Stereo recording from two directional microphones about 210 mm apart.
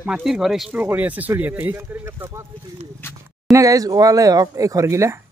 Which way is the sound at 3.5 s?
15° right (ahead or behind).